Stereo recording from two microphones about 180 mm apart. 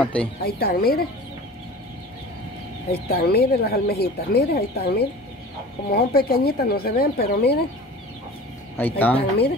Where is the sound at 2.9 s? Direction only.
60° left (ahead or behind).